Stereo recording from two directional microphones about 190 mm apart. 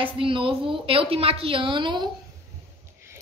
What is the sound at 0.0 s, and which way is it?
A woman's voice, 25° right (ahead or behind).